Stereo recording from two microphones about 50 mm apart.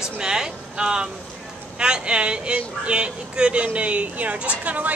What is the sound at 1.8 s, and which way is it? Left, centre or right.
A woman's voice, centre.